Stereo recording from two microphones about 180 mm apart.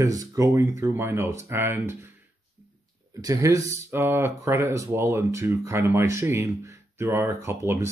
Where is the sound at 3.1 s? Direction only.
20° right (ahead or behind).